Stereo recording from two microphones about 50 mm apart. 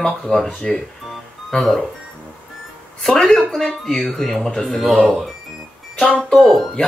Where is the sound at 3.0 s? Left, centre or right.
Centre.